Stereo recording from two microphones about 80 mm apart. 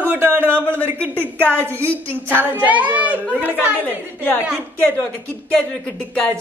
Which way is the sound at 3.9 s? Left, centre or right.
Left.